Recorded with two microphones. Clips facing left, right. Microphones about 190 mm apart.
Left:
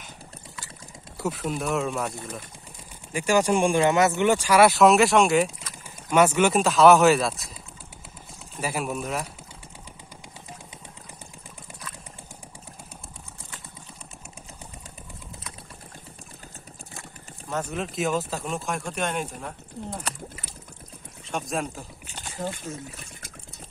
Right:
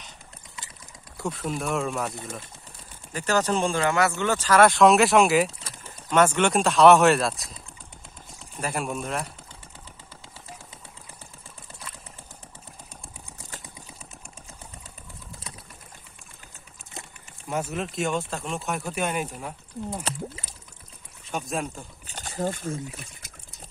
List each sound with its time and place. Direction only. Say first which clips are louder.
1.2 s speech: left 1 dB; centre (ahead or behind)
3.1 s speech: left 3 dB; 10° left (ahead or behind)
8.5 s speech: left 1 dB; 5° left (ahead or behind)
17.5 s speech: right 1 dB; 5° right (ahead or behind)
20.0 s speech: right 3 dB; 25° right (ahead or behind)
21.3 s speech: left 1 dB; centre (ahead or behind)
22.0 s a sound: right 4 dB; 40° right (ahead or behind)